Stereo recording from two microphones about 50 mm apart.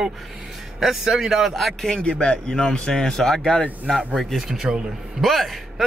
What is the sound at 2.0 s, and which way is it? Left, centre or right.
A man's voice, left.